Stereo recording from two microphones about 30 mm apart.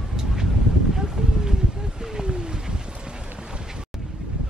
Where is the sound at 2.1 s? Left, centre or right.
Right.